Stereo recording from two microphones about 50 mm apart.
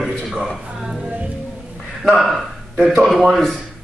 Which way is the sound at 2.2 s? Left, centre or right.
Centre.